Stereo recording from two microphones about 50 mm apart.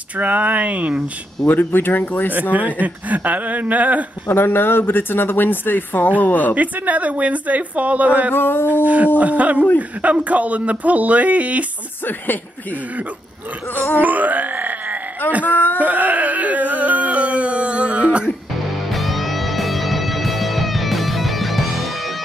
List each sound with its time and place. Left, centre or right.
0.2 s speech: right
1.5 s speech: left
2.5 s speech: right
4.3 s speech: left
6.5 s speech: right
8.3 s speech: left
8.8 s speech: right
13.7 s speech: left
14.0 s a sound: right
15.4 s a sound: left
15.8 s a sound: right
18.9 s music: centre